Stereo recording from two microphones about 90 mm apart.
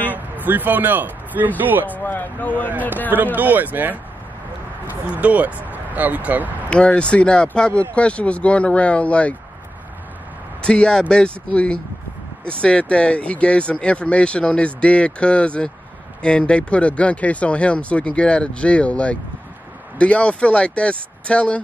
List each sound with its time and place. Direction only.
0.1 s speech: 20° right (ahead or behind)
2.0 s speech: 20° left (ahead or behind)
3.3 s speech: 20° right (ahead or behind)
5.1 s speech: 15° right (ahead or behind)
6.7 s speech: 10° left (ahead or behind)
10.6 s speech: 10° left (ahead or behind)